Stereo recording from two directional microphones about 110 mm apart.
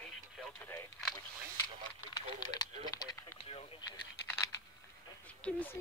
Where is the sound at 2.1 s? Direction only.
35° left (ahead or behind).